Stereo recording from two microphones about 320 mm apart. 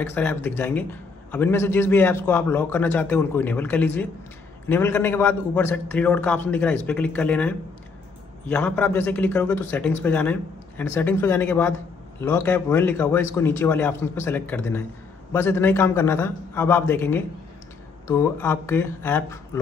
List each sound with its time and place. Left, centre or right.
0.0 s a man's voice: centre